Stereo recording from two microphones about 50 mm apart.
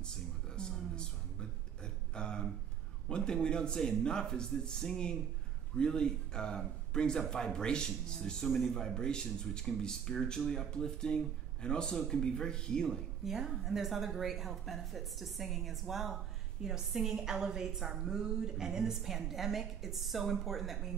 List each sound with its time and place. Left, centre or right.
0.6 s a sound: centre
3.1 s speech: centre
8.5 s a woman's voice: centre
8.7 s speech: centre
13.2 s a woman's voice: centre